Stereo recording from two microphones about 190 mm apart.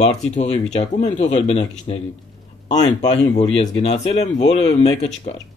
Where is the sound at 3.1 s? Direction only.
35° left (ahead or behind).